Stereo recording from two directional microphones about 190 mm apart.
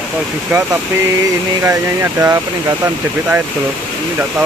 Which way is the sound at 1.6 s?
15° right (ahead or behind).